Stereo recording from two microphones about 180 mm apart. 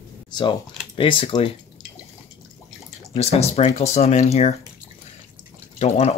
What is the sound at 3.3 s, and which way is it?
Speech, 35° left (ahead or behind).